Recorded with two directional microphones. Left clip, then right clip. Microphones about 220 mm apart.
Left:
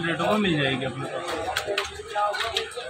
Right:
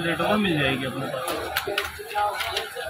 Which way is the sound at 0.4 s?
15° left (ahead or behind).